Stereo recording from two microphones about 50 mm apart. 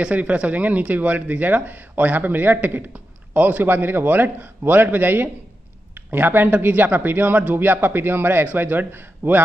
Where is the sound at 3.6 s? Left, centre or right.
Right.